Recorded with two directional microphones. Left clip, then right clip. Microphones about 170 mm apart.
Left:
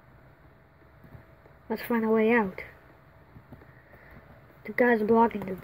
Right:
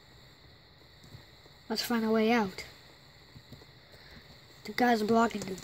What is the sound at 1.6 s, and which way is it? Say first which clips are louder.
Speech: left 3 dB; 40° right (ahead or behind).